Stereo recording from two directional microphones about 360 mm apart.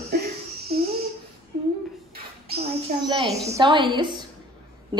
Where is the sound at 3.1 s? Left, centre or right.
Centre.